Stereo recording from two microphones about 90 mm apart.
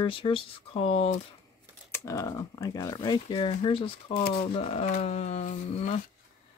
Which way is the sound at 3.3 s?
80° left.